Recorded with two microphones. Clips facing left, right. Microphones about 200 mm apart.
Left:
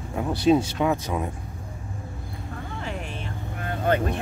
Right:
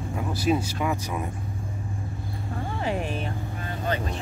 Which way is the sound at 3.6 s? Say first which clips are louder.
Left 6 dB; 55° left (ahead or behind).